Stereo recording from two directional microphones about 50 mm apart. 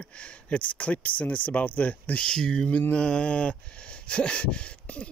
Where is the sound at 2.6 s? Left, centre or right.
Left.